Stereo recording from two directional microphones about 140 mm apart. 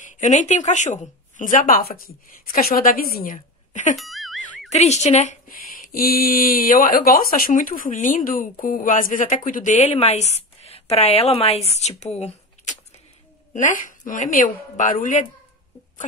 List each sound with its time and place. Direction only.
0.0 s a woman's voice: 60° left (ahead or behind)
3.9 s a sound: centre (ahead or behind)
4.6 s speech: 55° left (ahead or behind)
5.5 s speech: 90° left; by 13.0 s 50° left (ahead or behind)
13.5 s speech: 65° left (ahead or behind)